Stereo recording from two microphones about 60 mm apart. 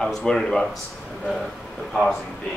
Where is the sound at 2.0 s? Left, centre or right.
Centre.